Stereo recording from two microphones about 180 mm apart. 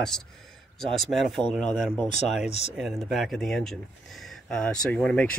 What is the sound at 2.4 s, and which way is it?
Speech, 35° left (ahead or behind).